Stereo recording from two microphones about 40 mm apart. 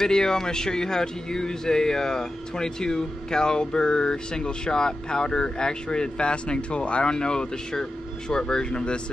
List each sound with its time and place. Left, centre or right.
0.0 s speech: centre